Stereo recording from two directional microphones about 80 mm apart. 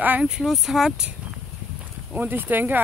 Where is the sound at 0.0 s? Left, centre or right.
Centre.